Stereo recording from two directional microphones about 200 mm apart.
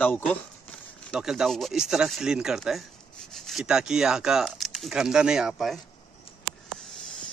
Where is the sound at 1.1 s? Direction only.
5° right (ahead or behind).